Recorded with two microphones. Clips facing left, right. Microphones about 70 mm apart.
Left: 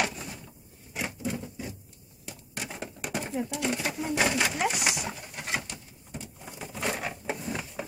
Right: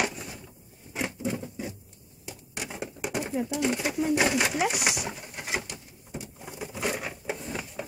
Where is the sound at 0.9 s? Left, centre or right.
Centre.